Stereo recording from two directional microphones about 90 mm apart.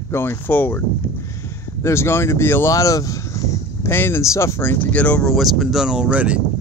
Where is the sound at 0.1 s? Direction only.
25° left (ahead or behind).